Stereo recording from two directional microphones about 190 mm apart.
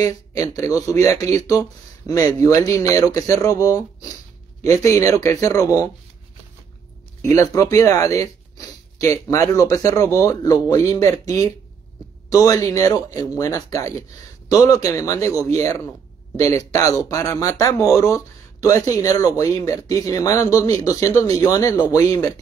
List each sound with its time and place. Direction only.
0.6 s speech: 20° left (ahead or behind)
7.2 s speech: 15° left (ahead or behind)